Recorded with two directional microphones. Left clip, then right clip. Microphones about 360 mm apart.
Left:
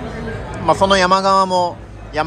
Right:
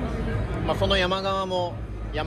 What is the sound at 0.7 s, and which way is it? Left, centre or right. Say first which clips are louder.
A man's voice: left 11 dB; left.